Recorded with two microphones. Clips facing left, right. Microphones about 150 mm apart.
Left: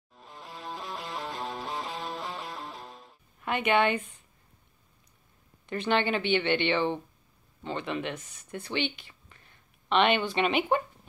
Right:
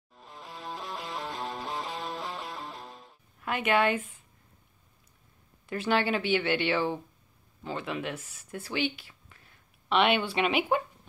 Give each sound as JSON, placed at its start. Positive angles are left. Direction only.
{"t": 0.1, "sound": "music", "side_deg": 0}
{"t": 5.7, "sound": "speech", "side_deg": -5}